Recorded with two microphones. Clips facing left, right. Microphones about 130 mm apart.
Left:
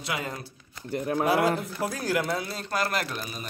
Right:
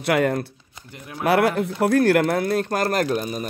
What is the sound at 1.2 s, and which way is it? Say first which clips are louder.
Speech: right 7 dB; 70° right (ahead or behind).